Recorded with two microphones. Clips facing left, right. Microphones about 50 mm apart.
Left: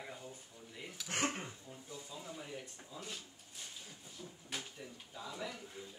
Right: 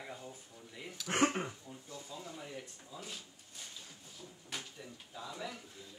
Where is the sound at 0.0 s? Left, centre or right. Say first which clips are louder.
Right 1 dB; centre.